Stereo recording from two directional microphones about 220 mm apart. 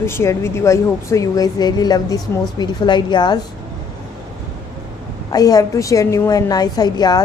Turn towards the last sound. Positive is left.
turn(degrees=20)  # may be behind; listen again after turning